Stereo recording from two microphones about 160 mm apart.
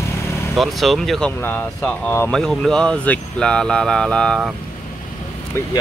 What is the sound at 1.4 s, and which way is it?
Speech, 10° left (ahead or behind).